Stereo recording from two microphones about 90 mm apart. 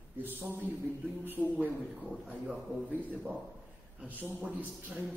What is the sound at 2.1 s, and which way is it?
Speech, 5° right (ahead or behind).